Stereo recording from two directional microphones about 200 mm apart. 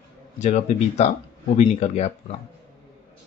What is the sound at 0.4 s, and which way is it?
Speech, 35° left (ahead or behind).